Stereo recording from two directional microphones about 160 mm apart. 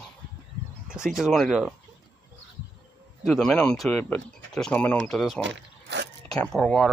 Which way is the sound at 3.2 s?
Centre (ahead or behind).